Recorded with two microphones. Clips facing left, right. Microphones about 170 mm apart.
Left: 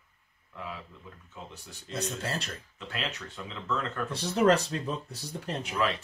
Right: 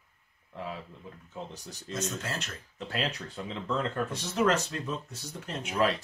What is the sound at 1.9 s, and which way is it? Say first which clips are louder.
Speech: left 1 dB; 35° left (ahead or behind).